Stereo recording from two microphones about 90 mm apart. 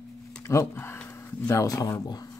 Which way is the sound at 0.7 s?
25° left (ahead or behind).